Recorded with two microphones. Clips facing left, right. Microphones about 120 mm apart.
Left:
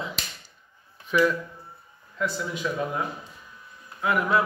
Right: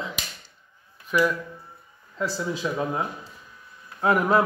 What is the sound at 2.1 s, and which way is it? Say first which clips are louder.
Speech: right 1 dB; 30° right (ahead or behind).